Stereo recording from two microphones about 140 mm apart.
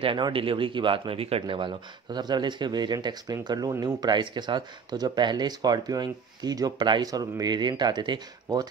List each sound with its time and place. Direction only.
0.0 s speech: 40° right (ahead or behind)